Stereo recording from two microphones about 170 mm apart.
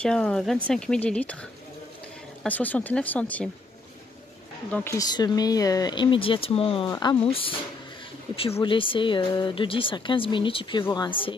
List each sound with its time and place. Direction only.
0.0 s speech: 5° left (ahead or behind)
2.4 s speech: 10° left (ahead or behind)
4.6 s speech: 10° left (ahead or behind)
4.9 s speech: 25° left (ahead or behind)
8.6 s speech: 30° left (ahead or behind)